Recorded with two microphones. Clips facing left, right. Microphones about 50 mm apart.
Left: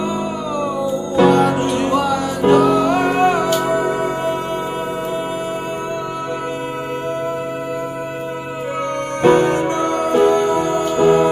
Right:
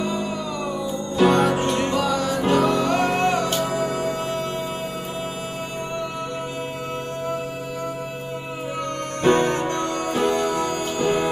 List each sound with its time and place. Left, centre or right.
0.0 s music: centre
9.2 s music: centre